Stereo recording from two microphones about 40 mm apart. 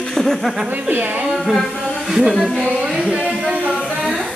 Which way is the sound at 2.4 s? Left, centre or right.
Right.